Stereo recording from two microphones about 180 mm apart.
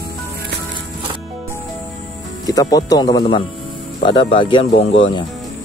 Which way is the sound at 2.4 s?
20° left (ahead or behind).